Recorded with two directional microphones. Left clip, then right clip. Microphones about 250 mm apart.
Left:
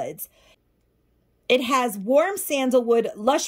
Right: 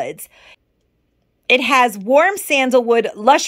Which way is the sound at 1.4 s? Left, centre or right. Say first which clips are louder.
Right 7 dB; centre.